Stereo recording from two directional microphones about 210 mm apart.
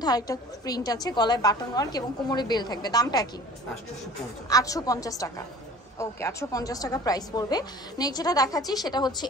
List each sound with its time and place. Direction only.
0.0 s a woman's voice: 20° left (ahead or behind)
4.5 s a woman's voice: 15° left (ahead or behind)